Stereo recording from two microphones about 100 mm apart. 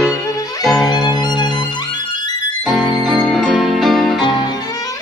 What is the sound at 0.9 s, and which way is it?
Violin, 45° left (ahead or behind).